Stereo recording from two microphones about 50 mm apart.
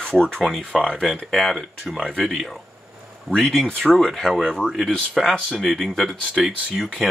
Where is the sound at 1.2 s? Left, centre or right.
Centre.